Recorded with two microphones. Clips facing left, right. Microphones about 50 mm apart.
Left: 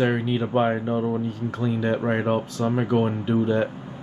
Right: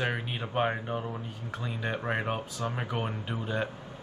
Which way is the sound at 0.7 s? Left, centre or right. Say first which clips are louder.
Left 9 dB; centre.